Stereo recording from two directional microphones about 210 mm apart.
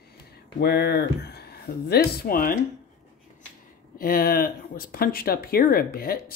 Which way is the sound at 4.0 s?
45° left (ahead or behind).